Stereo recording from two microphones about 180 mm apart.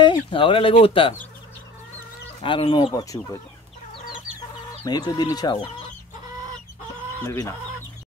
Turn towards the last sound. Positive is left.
turn(degrees=15)  # may be behind; listen again after turning